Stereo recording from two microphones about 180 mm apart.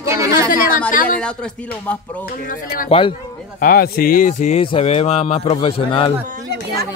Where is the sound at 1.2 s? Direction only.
5° left (ahead or behind).